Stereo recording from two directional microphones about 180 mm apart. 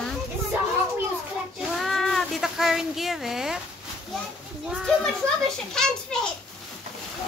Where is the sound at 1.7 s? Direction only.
Centre (ahead or behind).